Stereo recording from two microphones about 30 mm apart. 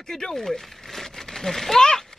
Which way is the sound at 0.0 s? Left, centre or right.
Centre.